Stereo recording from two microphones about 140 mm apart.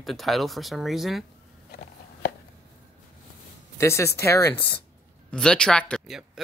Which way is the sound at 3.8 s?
20° left (ahead or behind).